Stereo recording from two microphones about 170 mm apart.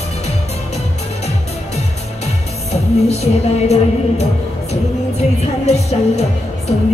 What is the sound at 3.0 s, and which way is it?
Music, 40° left (ahead or behind).